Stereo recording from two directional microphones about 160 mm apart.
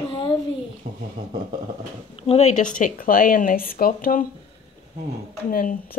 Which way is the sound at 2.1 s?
40° left (ahead or behind).